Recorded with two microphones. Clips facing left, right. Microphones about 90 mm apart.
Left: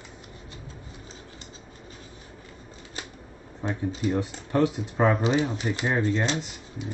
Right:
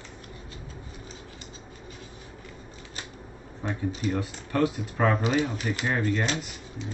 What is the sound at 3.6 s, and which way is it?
Speech, 25° left (ahead or behind).